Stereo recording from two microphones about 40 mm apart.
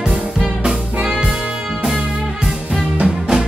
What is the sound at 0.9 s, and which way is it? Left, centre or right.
Music, right.